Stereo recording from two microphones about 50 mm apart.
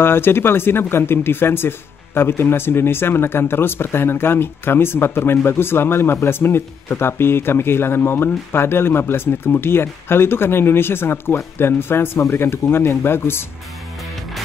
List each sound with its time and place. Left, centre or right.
0.0 s speech: left